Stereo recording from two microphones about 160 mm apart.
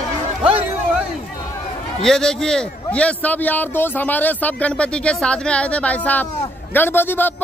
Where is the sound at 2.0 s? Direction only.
5° left (ahead or behind).